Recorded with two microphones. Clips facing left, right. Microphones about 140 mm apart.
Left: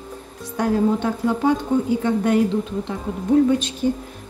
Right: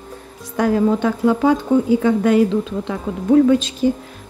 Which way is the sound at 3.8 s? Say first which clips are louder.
Right 3 dB; 90° right.